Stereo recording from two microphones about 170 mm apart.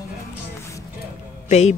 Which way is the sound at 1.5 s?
40° left (ahead or behind).